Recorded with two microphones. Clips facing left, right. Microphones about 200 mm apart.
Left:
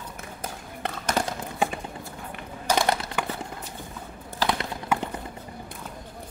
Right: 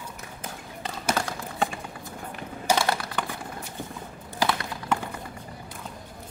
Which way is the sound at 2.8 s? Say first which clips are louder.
Left 2 dB; 20° left (ahead or behind).